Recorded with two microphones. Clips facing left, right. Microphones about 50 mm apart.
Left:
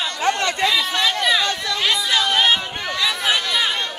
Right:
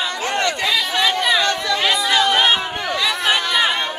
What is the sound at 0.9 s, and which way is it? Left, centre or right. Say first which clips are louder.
Chatter: right 2 dB; centre.